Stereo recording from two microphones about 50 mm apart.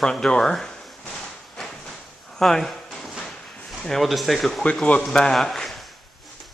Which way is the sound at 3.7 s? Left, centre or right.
Centre.